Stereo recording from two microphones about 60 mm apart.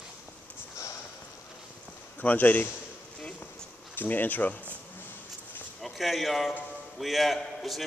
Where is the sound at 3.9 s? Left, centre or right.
Left.